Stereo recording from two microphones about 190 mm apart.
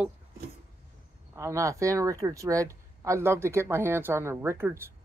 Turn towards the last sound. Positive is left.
turn(degrees=-10)  # may be behind; listen again after turning